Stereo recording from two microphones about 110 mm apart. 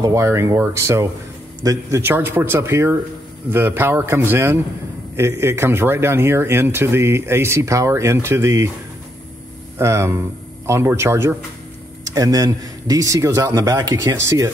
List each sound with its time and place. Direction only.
0.0 s speech: 25° right (ahead or behind)
9.8 s a man's voice: 25° right (ahead or behind)